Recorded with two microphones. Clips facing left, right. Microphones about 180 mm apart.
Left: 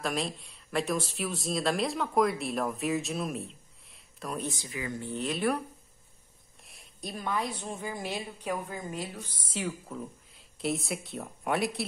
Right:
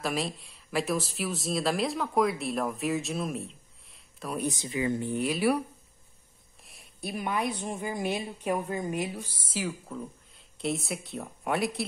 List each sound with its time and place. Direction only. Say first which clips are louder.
0.0 s speech: right 1 dB; centre (ahead or behind)
4.4 s speech: right 9 dB; 20° right (ahead or behind)
5.1 s speech: right 1 dB; 10° right (ahead or behind)
6.6 s a woman's voice: right 3 dB; centre (ahead or behind)